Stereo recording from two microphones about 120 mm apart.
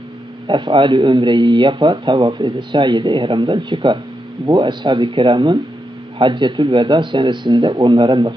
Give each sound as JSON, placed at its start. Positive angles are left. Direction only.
{"t": 0.5, "sound": "speech", "side_deg": -40}